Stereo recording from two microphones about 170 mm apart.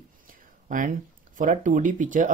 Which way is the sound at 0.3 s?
50° right (ahead or behind).